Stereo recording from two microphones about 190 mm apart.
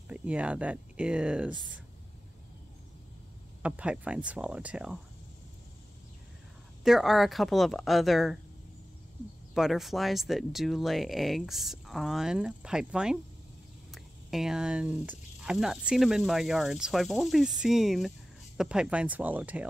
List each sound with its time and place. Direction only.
0.1 s speech: 5° right (ahead or behind)
3.6 s speech: 5° right (ahead or behind)
6.8 s speech: centre (ahead or behind)
9.5 s speech: centre (ahead or behind)